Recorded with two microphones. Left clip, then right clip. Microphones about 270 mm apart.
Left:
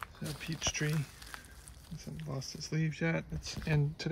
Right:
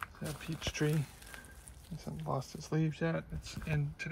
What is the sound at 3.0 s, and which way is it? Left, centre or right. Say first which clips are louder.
Speech: left 2 dB; centre.